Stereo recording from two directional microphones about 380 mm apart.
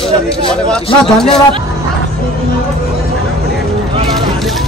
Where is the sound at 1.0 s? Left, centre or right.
Centre.